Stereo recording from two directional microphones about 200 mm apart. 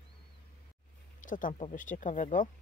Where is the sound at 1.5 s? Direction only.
35° left (ahead or behind).